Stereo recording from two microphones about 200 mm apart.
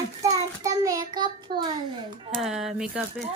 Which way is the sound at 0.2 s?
15° right (ahead or behind).